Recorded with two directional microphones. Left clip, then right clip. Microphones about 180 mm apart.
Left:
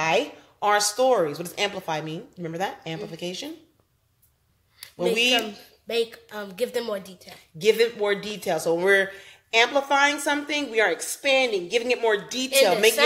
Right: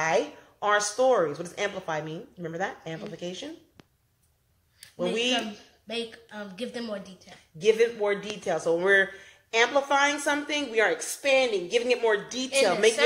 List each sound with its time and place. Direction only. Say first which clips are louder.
0.0 s speech: left 2 dB; 15° left (ahead or behind)
4.9 s speech: left 5 dB; 15° left (ahead or behind)
5.9 s a woman's voice: left 8 dB; 90° left
7.6 s speech: left 2 dB; 25° left (ahead or behind)